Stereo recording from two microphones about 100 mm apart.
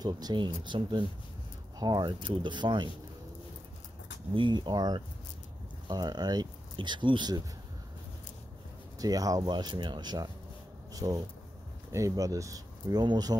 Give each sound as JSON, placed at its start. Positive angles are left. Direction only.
{"t": 0.0, "sound": "speech", "side_deg": -45}
{"t": 4.4, "sound": "speech", "side_deg": -50}
{"t": 9.0, "sound": "speech", "side_deg": -40}